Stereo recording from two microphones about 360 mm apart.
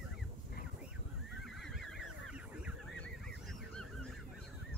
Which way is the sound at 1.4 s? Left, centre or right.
Centre.